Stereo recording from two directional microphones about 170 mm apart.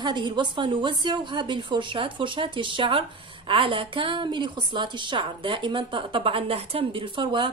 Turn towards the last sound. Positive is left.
turn(degrees=-30)  # may be behind; listen again after turning